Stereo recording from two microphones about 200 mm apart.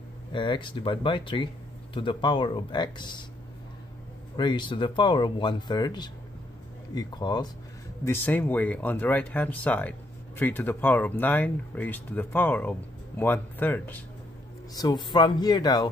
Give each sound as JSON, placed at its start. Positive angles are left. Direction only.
{"t": 0.3, "sound": "speech", "side_deg": 25}
{"t": 4.4, "sound": "speech", "side_deg": 25}
{"t": 8.0, "sound": "speech", "side_deg": 10}
{"t": 14.7, "sound": "speech", "side_deg": 20}